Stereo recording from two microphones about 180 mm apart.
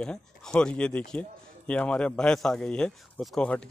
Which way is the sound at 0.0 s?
5° left (ahead or behind).